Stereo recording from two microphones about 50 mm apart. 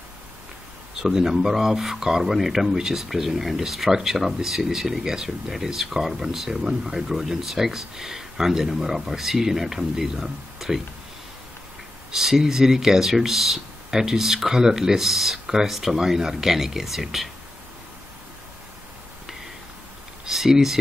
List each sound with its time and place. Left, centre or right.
1.0 s speech: centre
12.1 s speech: centre
20.2 s speech: centre